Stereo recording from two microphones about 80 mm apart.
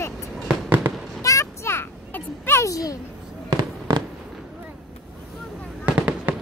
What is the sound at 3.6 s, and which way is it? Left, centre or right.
Fireworks, right.